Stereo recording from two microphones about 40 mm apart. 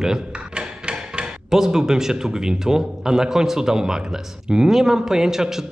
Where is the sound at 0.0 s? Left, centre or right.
Centre.